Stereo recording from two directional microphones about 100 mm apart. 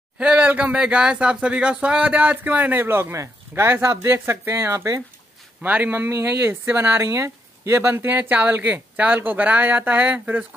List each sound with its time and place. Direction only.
0.2 s speech: 10° right (ahead or behind); by 5.0 s 30° right (ahead or behind)
5.6 s speech: 20° right (ahead or behind)